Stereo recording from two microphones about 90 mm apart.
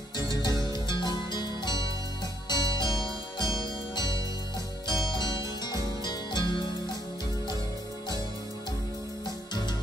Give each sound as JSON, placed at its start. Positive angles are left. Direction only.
{"t": 0.3, "sound": "music", "side_deg": 50}